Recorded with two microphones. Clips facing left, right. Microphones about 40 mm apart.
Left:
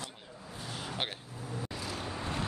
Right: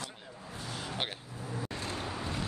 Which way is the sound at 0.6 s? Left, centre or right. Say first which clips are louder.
Right 1 dB; centre.